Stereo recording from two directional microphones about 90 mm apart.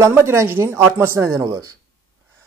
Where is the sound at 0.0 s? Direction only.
30° right (ahead or behind).